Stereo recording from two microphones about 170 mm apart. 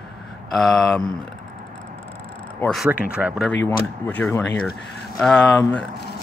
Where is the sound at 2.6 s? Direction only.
5° left (ahead or behind).